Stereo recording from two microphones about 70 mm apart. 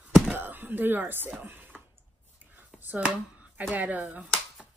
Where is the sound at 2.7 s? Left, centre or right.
Right.